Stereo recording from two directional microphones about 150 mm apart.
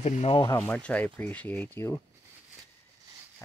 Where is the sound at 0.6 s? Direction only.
10° left (ahead or behind).